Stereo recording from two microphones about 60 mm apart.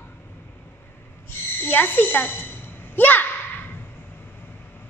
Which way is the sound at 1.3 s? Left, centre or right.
Left.